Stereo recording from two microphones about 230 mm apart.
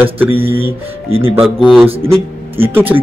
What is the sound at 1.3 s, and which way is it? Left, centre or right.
Speech, centre.